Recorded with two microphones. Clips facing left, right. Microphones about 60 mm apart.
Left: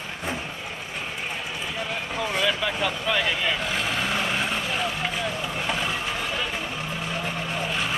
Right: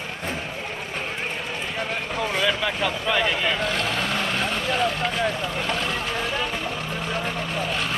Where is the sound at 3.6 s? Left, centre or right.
Centre.